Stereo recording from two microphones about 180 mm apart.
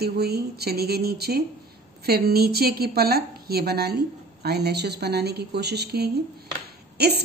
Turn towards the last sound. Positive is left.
turn(degrees=-65)  # may be behind; listen again after turning